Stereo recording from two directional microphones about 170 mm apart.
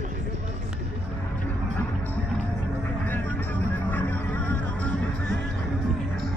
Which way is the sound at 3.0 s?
10° left (ahead or behind).